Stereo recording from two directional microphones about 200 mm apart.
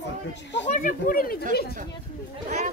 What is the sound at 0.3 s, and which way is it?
Speech, 60° left (ahead or behind).